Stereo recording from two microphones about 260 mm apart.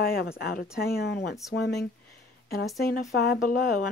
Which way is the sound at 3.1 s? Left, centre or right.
Left.